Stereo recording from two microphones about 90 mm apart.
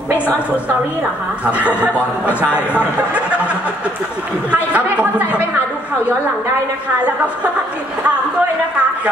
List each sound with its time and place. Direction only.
1.4 s speech: 15° right (ahead or behind)
4.7 s speech: 15° right (ahead or behind)